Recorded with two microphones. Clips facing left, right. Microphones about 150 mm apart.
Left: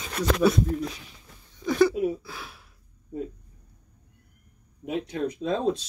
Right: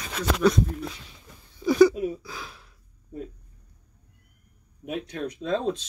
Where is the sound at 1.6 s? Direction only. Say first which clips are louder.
Right 3 dB; centre (ahead or behind).